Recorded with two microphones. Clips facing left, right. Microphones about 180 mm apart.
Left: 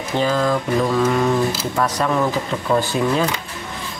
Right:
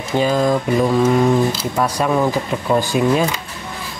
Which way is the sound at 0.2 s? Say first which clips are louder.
Right 2 dB; 15° right (ahead or behind).